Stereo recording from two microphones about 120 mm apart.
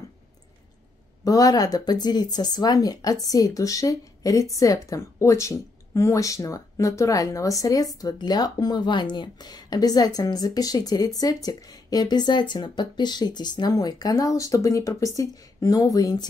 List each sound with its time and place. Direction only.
1.2 s speech: 30° left (ahead or behind)